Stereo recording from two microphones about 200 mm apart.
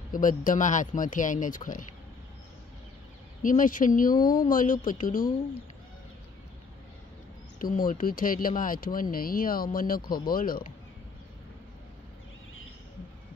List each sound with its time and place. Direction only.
0.1 s speech: 40° left (ahead or behind)
3.4 s speech: 40° left (ahead or behind)
7.5 s speech: 45° left (ahead or behind)